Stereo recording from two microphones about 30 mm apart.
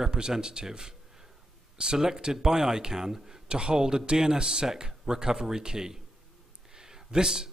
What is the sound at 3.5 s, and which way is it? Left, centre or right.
A man's voice, right.